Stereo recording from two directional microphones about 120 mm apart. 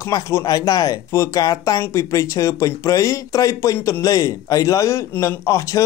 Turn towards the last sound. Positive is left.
turn(degrees=25)  # may be behind; listen again after turning